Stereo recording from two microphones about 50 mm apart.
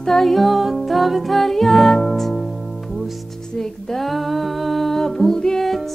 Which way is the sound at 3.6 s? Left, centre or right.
Centre.